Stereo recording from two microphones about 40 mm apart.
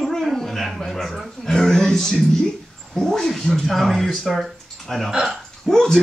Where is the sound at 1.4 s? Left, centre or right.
Centre.